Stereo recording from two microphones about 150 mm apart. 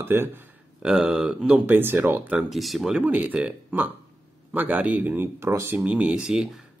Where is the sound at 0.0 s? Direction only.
15° right (ahead or behind).